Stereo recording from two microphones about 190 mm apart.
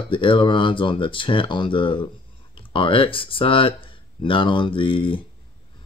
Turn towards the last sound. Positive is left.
turn(degrees=25)  # may be behind; listen again after turning